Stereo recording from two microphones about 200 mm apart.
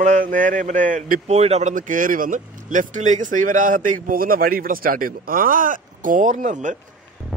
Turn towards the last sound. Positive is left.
turn(degrees=-40)  # may be behind; listen again after turning